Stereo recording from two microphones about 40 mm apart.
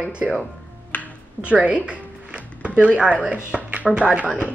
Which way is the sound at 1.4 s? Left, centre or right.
Right.